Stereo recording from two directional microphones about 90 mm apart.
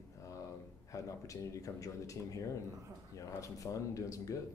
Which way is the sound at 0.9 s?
40° left (ahead or behind).